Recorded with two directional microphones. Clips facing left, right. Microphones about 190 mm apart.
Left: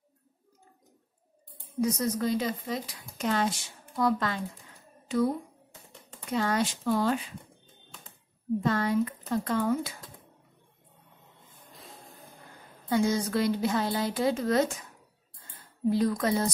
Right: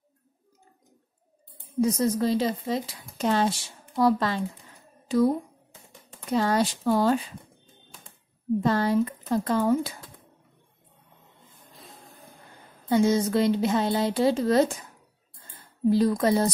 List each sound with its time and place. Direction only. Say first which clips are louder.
1.8 s speech: right 4 dB; 30° right (ahead or behind)
8.6 s speech: right 3 dB; 35° right (ahead or behind)
12.9 s speech: right 5 dB; 25° right (ahead or behind)
15.9 s speech: right 4 dB; 35° right (ahead or behind)